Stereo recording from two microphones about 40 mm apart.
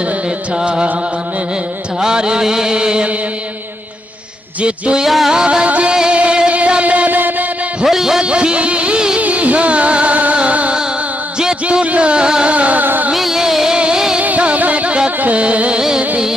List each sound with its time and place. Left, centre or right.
2.0 s mantra: centre
4.6 s music: right
5.0 s music: centre
5.3 s music: right
7.8 s music: centre
8.2 s music: right
9.2 s music: right
11.8 s middle eastern music: right
12.5 s music: right
12.8 s music: right
13.1 s music: centre
14.4 s music: right